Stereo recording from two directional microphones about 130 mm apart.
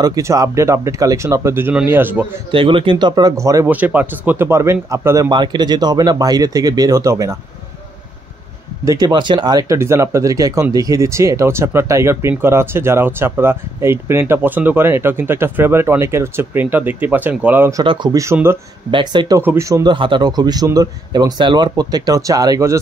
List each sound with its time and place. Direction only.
0.0 s a man's voice: 25° right (ahead or behind)
2.5 s speech: 45° right (ahead or behind); by 3.6 s 25° right (ahead or behind)
3.6 s speech: 15° right (ahead or behind)
5.3 s speech: 35° right (ahead or behind)
8.8 s speech: 30° right (ahead or behind); by 17.7 s 15° right (ahead or behind)
17.8 s speech: 35° right (ahead or behind)
18.2 s speech: 20° right (ahead or behind)
18.9 s speech: 35° right (ahead or behind)
19.4 s speech: 20° right (ahead or behind)